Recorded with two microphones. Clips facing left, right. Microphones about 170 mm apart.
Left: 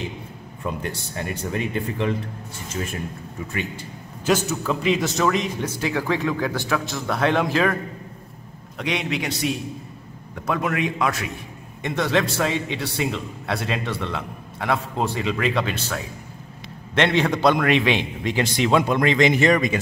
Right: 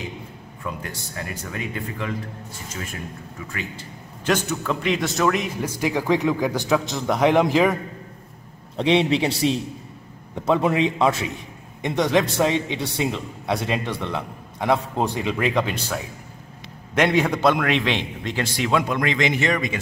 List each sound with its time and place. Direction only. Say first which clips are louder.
0.7 s speech: left 4 dB; 25° left (ahead or behind)
4.3 s a man's voice: left 1 dB; 5° left (ahead or behind); by 7.7 s 15° right (ahead or behind)
8.7 s a man's voice: right 7 dB; 30° right (ahead or behind); by 19.8 s 45° left (ahead or behind)